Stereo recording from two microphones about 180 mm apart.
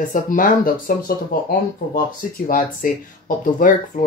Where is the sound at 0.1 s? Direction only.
50° left (ahead or behind).